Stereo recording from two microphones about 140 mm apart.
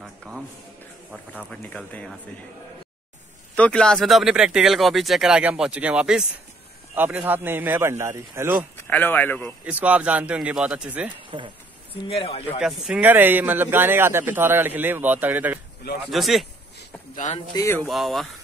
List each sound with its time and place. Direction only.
0.0 s a sound: 5° right (ahead or behind)
1.5 s speech: 5° left (ahead or behind)
3.5 s speech: 10° left (ahead or behind); by 8.6 s 20° right (ahead or behind)
8.7 s speech: 15° left (ahead or behind)
9.7 s speech: 10° right (ahead or behind)
11.3 s speech: 35° right (ahead or behind)
11.9 s speech: 40° left (ahead or behind)
12.5 s speech: 5° right (ahead or behind)
16.1 s speech: centre (ahead or behind)
17.1 s speech: 60° left (ahead or behind)
17.6 s speech: 20° left (ahead or behind)
17.8 s speech: centre (ahead or behind)